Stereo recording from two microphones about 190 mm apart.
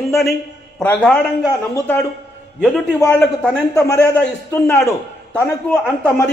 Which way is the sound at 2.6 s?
Centre (ahead or behind).